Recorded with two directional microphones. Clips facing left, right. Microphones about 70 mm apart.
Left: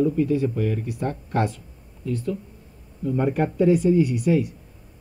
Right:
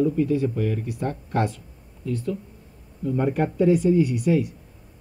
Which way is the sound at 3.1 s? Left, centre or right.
Left.